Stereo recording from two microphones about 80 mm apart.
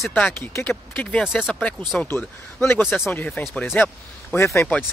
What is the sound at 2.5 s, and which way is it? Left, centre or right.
Speech, left.